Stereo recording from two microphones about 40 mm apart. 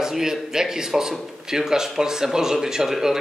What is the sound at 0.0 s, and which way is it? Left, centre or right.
Speech, centre.